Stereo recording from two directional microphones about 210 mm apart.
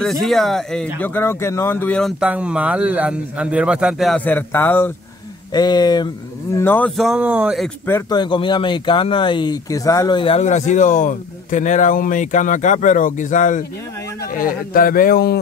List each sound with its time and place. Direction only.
0.0 s speech: centre (ahead or behind)
7.0 s speech: 5° right (ahead or behind)
8.2 s speech: 25° left (ahead or behind); by 15.3 s 45° left (ahead or behind)